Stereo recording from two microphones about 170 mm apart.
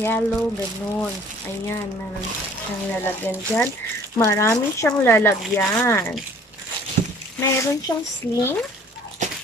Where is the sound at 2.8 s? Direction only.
10° left (ahead or behind).